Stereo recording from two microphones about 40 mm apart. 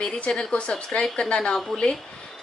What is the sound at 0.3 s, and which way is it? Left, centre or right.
A woman's voice, left.